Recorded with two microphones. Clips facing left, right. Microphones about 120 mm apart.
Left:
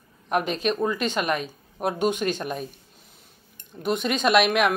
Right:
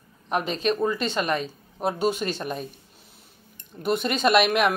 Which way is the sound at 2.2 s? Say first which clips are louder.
Left 2 dB; centre (ahead or behind).